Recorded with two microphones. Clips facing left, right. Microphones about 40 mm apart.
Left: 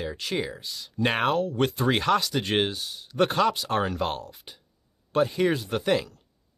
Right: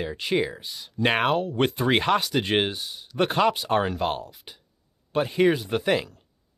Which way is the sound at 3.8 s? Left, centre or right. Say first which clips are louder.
Right 2 dB; centre.